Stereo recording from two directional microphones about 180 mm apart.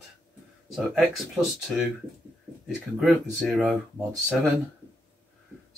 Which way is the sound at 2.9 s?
5° right (ahead or behind).